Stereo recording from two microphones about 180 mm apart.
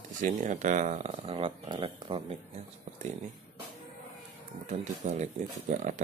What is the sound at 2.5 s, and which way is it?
Speech, 40° right (ahead or behind).